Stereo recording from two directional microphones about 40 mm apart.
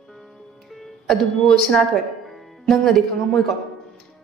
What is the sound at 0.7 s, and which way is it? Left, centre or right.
Music, centre.